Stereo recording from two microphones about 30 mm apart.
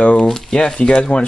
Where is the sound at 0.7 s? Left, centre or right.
Left.